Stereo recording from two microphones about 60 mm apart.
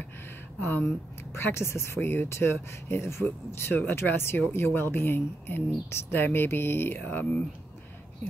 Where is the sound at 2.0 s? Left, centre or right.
Left.